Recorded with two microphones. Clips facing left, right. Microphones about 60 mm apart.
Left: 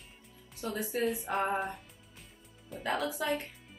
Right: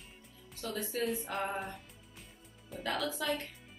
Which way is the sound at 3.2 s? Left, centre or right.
Left.